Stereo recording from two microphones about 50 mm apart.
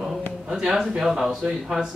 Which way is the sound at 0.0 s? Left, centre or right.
Centre.